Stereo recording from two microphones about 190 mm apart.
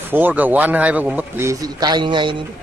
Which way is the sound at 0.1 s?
10° right (ahead or behind).